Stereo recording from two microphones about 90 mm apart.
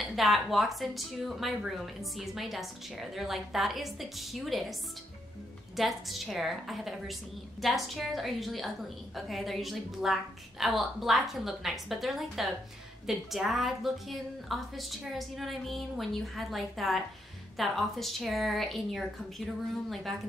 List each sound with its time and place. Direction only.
0.0 s a woman's voice: centre (ahead or behind)
5.8 s a woman's voice: centre (ahead or behind)